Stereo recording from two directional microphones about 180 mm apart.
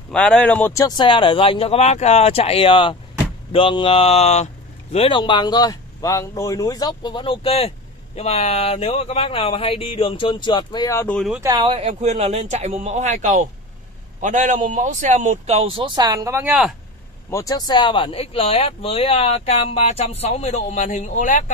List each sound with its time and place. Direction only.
0.1 s speech: 5° left (ahead or behind)
11.1 s speech: 5° right (ahead or behind)
11.4 s speech: 25° right (ahead or behind)
11.9 s a man's voice: 40° right (ahead or behind); by 16.7 s 5° right (ahead or behind)
17.3 s speech: 20° left (ahead or behind); by 21.5 s 45° left (ahead or behind)